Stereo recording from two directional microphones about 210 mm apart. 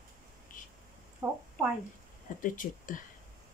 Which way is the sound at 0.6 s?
40° left (ahead or behind).